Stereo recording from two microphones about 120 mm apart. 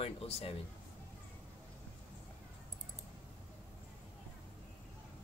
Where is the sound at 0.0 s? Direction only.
55° left (ahead or behind).